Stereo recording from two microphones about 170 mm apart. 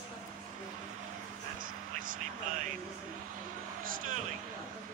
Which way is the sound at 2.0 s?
55° right (ahead or behind).